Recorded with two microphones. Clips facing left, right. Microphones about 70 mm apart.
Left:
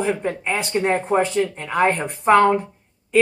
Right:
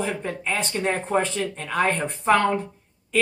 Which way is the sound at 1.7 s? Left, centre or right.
Left.